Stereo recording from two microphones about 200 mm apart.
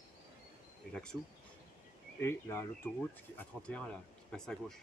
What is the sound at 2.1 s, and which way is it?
Speech, 15° left (ahead or behind).